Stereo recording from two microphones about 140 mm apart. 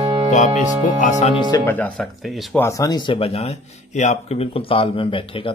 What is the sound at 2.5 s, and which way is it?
A man's voice, 20° left (ahead or behind).